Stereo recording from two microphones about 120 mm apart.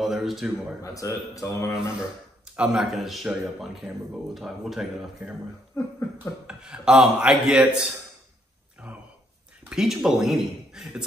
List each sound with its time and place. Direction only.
0.0 s a man's voice: centre (ahead or behind)
0.8 s a man's voice: 25° left (ahead or behind)
2.5 s a man's voice: 5° right (ahead or behind)
5.8 s a man's voice: 25° left (ahead or behind)
6.4 s speech: 5° right (ahead or behind)
9.7 s a man's voice: 5° right (ahead or behind)